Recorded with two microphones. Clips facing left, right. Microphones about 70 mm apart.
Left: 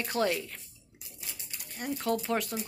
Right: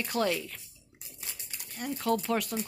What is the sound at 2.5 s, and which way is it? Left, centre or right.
Speech, centre.